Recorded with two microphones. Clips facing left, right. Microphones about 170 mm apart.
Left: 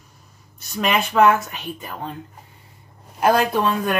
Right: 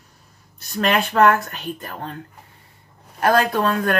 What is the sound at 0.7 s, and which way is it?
Speech, 5° left (ahead or behind).